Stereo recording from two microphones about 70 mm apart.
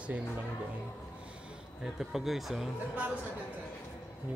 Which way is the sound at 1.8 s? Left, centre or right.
Centre.